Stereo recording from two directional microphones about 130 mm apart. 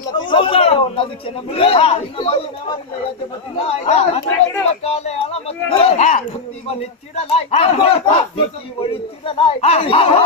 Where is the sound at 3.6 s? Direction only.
55° left (ahead or behind).